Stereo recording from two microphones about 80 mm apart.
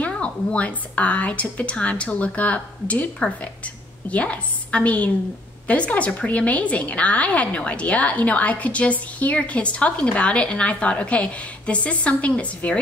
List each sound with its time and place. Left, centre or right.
0.0 s a woman's voice: centre